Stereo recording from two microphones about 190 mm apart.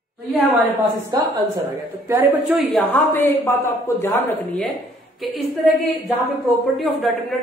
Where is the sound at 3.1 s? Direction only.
10° left (ahead or behind).